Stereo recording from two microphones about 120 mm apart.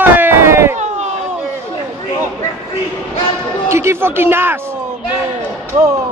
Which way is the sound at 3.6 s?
20° right (ahead or behind).